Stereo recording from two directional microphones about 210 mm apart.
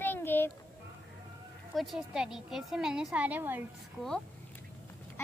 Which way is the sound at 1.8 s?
Centre (ahead or behind).